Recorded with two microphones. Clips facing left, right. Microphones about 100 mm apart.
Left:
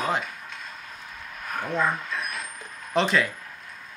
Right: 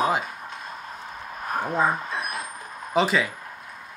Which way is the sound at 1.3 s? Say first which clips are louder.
Right 3 dB; 35° right (ahead or behind).